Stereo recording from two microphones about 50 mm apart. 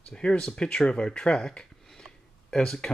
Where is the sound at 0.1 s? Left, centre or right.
Centre.